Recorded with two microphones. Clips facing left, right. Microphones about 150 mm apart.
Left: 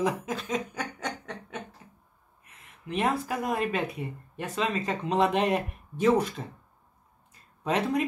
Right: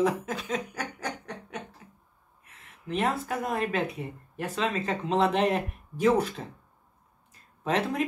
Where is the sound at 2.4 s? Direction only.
Centre (ahead or behind).